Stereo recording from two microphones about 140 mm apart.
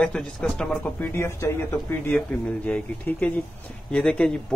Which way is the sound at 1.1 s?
20° left (ahead or behind).